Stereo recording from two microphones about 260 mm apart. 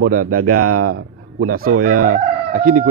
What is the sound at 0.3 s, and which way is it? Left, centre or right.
A man's voice, right.